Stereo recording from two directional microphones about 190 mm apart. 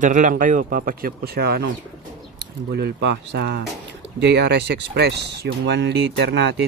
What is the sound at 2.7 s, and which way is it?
Speech, 60° right (ahead or behind).